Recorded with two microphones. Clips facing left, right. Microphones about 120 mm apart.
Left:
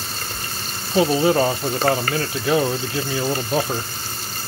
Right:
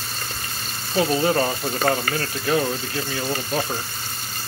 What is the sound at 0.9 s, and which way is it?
Speech, 15° left (ahead or behind).